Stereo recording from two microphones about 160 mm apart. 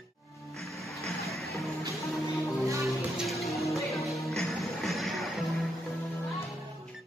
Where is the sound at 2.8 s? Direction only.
Centre (ahead or behind).